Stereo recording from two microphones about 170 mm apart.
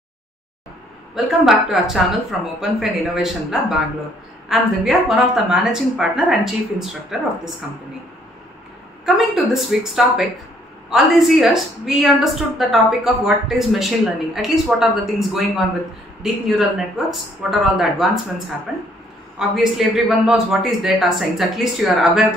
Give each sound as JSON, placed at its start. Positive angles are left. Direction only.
{"t": 1.1, "sound": "a woman's voice", "side_deg": 0}
{"t": 9.0, "sound": "a woman's voice", "side_deg": -5}
{"t": 17.1, "sound": "a woman's voice", "side_deg": 0}